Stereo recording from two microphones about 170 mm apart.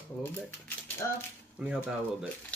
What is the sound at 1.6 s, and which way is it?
Speech, 5° right (ahead or behind).